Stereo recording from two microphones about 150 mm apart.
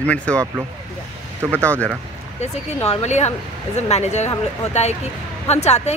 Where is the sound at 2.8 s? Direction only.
45° left (ahead or behind).